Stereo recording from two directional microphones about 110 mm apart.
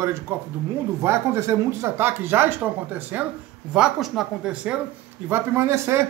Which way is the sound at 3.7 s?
5° right (ahead or behind).